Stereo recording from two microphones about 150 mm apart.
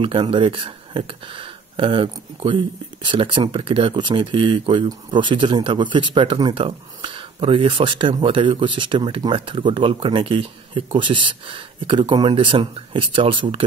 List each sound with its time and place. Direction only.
0.0 s speech: 35° right (ahead or behind)